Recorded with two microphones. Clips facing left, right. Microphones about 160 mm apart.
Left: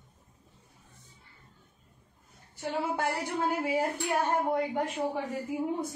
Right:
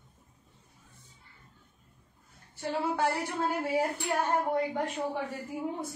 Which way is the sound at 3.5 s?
10° left (ahead or behind).